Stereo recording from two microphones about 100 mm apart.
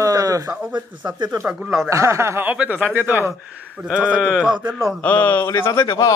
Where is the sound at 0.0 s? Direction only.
35° right (ahead or behind).